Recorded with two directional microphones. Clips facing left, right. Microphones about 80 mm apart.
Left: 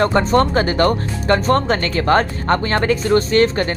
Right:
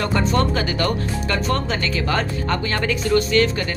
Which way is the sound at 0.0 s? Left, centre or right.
Left.